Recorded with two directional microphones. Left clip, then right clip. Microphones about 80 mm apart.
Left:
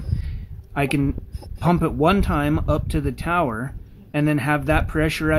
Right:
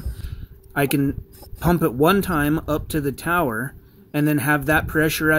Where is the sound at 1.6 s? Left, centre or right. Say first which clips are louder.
Right 1 dB; right.